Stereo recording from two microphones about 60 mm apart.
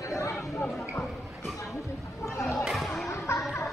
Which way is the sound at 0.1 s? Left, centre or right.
Left.